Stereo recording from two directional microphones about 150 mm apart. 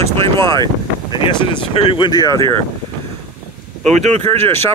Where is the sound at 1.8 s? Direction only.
35° left (ahead or behind).